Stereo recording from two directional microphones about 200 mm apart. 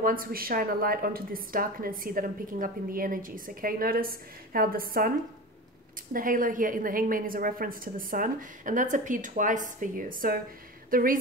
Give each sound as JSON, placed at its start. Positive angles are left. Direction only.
{"t": 0.0, "sound": "a woman's voice", "side_deg": -45}
{"t": 6.1, "sound": "a woman's voice", "side_deg": -45}